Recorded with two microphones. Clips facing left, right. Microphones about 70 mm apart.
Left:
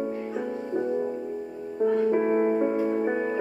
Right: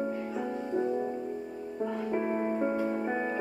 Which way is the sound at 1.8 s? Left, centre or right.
Left.